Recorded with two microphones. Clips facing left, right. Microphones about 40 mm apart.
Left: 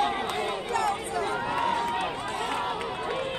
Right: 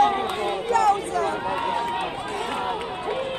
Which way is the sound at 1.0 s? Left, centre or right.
Left.